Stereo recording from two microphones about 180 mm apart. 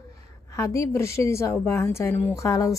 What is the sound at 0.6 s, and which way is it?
A woman's voice, 15° left (ahead or behind).